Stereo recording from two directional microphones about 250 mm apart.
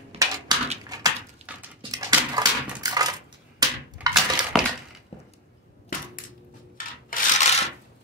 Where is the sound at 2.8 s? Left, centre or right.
Centre.